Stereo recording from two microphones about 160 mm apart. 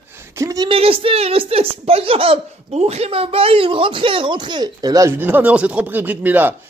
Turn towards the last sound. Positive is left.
turn(degrees=-10)  # may be behind; listen again after turning